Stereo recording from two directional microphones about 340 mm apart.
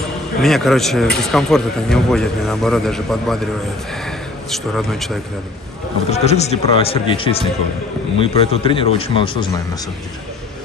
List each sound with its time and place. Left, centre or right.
0.4 s a man's voice: centre
6.0 s speech: centre